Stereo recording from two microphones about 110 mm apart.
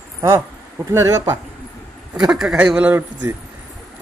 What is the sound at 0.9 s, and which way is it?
Speech, 25° right (ahead or behind).